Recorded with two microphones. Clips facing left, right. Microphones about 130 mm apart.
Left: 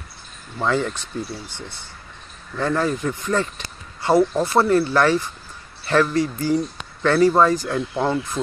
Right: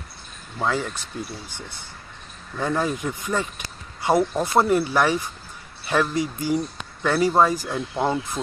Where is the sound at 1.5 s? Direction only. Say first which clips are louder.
Left 2 dB; 15° right (ahead or behind).